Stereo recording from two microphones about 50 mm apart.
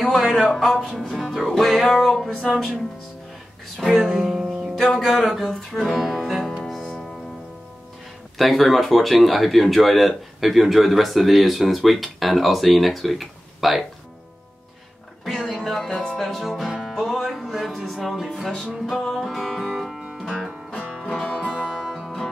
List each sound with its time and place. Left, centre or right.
0.0 s a sound: centre
0.5 s speech: centre
1.8 s music: centre
3.7 s speech: centre
4.2 s speech: centre
4.7 s speech: centre
6.6 s music: centre
8.4 s speech: centre
15.5 s music: centre
15.9 s music: centre
16.2 s music: centre
20.0 s music: centre
21.2 s music: left
21.7 s music: centre